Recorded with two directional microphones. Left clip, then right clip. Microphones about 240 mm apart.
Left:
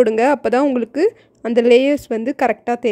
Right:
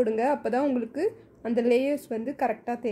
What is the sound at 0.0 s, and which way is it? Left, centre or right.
Speech, left.